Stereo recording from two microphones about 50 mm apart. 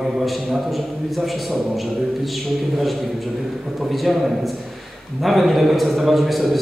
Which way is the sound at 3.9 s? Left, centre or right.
Centre.